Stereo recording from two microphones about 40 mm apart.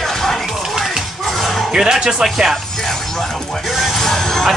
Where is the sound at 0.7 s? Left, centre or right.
Centre.